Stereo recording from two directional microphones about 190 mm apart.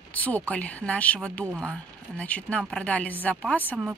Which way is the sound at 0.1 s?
10° left (ahead or behind).